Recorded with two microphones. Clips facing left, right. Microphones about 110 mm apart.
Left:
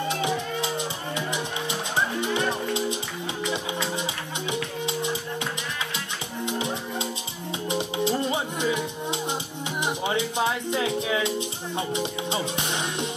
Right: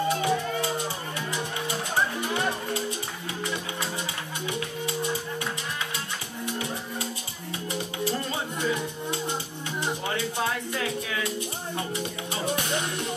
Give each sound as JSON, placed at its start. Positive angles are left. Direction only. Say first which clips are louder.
{"t": 0.1, "sound": "music", "louder": "right 1 dB", "side_deg": 20}